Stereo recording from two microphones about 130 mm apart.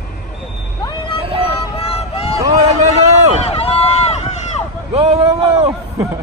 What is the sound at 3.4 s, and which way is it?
Run, 50° left (ahead or behind).